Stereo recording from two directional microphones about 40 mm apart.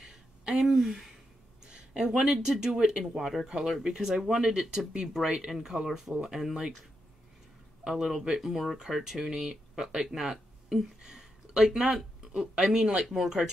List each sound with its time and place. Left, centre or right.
0.5 s speech: centre
1.6 s a sound: centre
2.4 s speech: centre
3.0 s speech: centre
7.9 s speech: centre
10.3 s a sound: centre
12.3 s speech: right
12.7 s speech: centre